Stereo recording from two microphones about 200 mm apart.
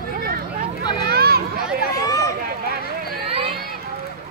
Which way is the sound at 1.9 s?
15° left (ahead or behind).